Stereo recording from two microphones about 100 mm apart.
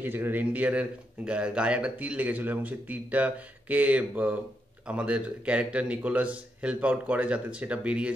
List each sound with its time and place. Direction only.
0.0 s speech: 20° right (ahead or behind)